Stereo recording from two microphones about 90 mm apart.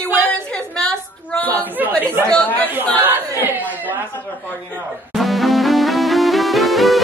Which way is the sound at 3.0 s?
20° right (ahead or behind).